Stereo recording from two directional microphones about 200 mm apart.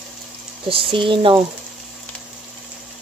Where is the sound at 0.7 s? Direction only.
25° right (ahead or behind).